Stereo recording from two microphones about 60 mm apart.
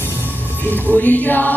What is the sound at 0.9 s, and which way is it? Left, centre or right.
Music, left.